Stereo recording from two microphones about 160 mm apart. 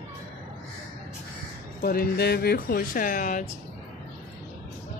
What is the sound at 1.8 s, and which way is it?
Speech, 75° left (ahead or behind).